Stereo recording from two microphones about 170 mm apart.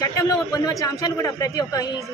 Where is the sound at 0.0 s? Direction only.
20° left (ahead or behind).